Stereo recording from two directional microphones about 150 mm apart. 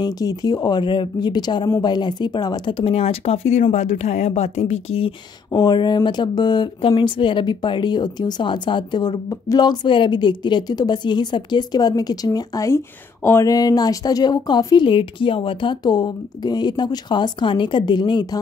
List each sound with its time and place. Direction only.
0.0 s speech: 25° left (ahead or behind); by 5.1 s 40° left (ahead or behind)
5.5 s speech: 25° left (ahead or behind)